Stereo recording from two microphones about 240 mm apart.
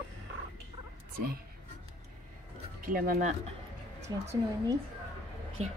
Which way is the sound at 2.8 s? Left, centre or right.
Right.